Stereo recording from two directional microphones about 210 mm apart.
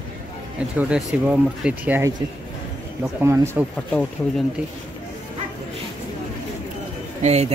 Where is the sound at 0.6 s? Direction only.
5° right (ahead or behind).